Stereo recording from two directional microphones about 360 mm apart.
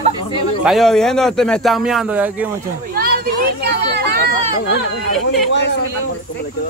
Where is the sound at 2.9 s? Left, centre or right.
Right.